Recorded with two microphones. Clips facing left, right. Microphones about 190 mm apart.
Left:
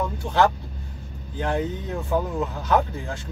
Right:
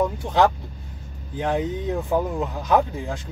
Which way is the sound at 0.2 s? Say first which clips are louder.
Right 1 dB; 15° right (ahead or behind).